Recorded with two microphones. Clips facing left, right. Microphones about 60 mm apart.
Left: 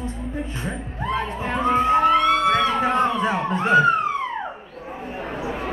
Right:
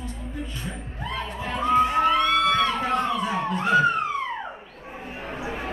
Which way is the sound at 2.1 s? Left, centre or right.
Centre.